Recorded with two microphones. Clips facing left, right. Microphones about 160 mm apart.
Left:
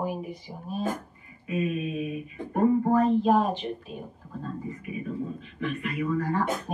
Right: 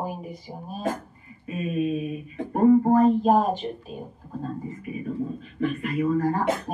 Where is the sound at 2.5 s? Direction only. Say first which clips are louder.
Right 4 dB; 35° right (ahead or behind).